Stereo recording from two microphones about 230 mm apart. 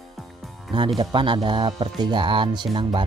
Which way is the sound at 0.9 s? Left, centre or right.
Right.